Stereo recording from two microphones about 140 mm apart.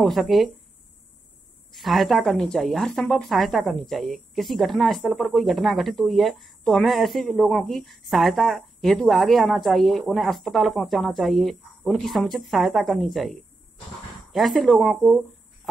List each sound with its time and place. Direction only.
0.0 s a woman's voice: centre (ahead or behind)
1.7 s a woman's voice: centre (ahead or behind)